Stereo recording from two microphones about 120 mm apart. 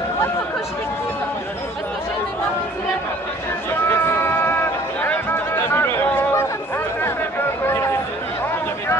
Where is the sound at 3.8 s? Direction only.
20° left (ahead or behind).